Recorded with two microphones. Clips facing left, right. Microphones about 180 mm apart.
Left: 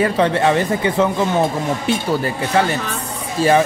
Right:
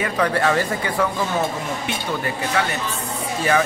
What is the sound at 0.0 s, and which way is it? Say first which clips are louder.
Speech: left 5 dB; 25° left (ahead or behind).